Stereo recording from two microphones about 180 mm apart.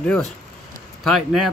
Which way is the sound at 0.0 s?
5° left (ahead or behind).